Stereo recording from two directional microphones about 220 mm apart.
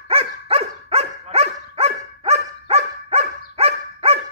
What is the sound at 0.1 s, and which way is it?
Dog, 25° right (ahead or behind).